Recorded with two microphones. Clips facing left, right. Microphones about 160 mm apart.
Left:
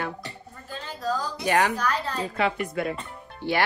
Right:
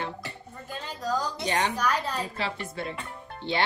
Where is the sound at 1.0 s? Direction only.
15° right (ahead or behind).